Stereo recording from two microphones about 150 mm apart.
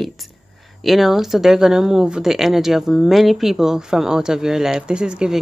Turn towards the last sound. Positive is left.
turn(degrees=-5)  # may be behind; listen again after turning